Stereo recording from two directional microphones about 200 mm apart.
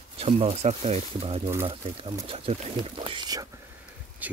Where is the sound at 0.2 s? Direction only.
30° right (ahead or behind).